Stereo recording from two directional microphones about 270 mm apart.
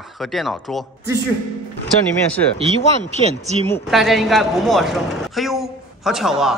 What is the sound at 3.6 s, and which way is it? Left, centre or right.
A man's voice, centre.